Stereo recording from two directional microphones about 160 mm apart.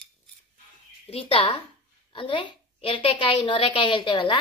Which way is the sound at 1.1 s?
35° left (ahead or behind).